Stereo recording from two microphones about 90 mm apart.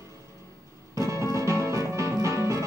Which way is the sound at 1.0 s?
35° right (ahead or behind).